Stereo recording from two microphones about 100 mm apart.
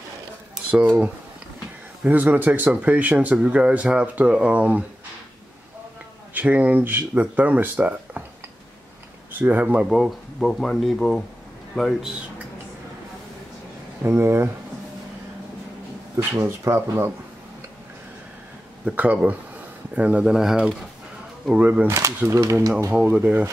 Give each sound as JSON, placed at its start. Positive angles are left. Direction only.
{"t": 0.7, "sound": "speech", "side_deg": -10}
{"t": 6.3, "sound": "speech", "side_deg": -15}
{"t": 9.4, "sound": "speech", "side_deg": -15}
{"t": 9.8, "sound": "speech", "side_deg": 0}
{"t": 14.0, "sound": "speech", "side_deg": -25}
{"t": 16.2, "sound": "speech", "side_deg": -30}
{"t": 18.9, "sound": "speech", "side_deg": -10}
{"t": 21.8, "sound": "speech", "side_deg": -30}
{"t": 23.1, "sound": "speech", "side_deg": -15}